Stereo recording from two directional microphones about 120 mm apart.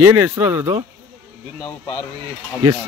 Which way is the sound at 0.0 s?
25° right (ahead or behind).